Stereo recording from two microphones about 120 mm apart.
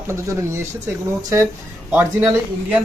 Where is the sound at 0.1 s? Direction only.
25° right (ahead or behind).